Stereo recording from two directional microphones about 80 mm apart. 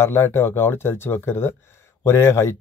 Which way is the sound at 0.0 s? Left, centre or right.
Left.